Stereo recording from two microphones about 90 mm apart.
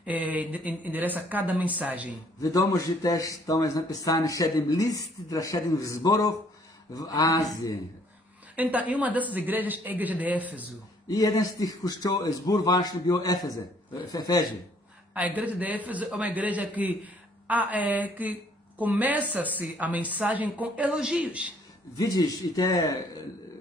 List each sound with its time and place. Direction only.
0.0 s a man's voice: 15° right (ahead or behind)
2.4 s a man's voice: 35° left (ahead or behind)
8.5 s a man's voice: 15° right (ahead or behind)
11.1 s a man's voice: 45° left (ahead or behind)
15.1 s a man's voice: 15° right (ahead or behind)
21.9 s a man's voice: 45° left (ahead or behind)